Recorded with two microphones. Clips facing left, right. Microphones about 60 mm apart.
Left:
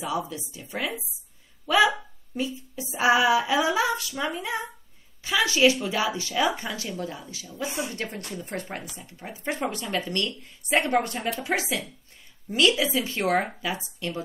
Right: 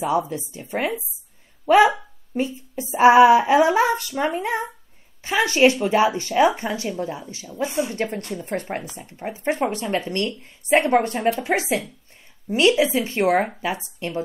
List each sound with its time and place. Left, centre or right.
0.0 s speech: right